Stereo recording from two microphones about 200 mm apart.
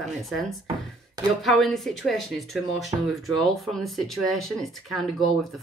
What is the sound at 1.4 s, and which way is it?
Speech, centre (ahead or behind).